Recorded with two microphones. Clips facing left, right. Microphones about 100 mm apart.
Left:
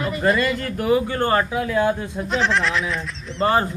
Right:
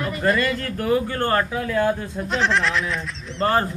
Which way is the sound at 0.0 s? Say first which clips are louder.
Left 1 dB; 10° left (ahead or behind).